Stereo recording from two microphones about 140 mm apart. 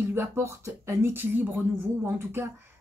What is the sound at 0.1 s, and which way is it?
Speech, 20° right (ahead or behind).